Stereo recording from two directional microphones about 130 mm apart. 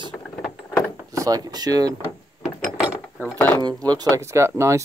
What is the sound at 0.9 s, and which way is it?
Speech, 25° right (ahead or behind).